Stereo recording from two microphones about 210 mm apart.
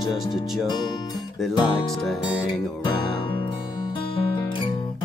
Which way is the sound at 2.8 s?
25° left (ahead or behind).